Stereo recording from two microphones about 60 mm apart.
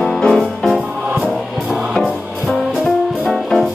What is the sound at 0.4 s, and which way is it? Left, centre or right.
Music, centre.